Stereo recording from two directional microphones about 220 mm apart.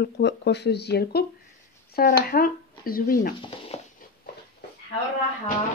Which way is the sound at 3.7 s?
30° left (ahead or behind).